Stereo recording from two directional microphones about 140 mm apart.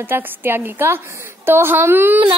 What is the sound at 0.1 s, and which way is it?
A woman's voice, 15° right (ahead or behind).